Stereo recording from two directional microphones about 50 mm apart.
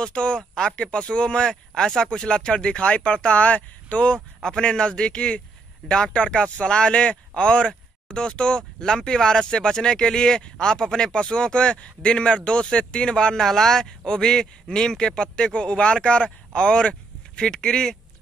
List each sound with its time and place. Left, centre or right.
0.0 s a man's voice: centre